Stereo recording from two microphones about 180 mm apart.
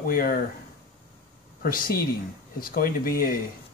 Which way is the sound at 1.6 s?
55° left (ahead or behind).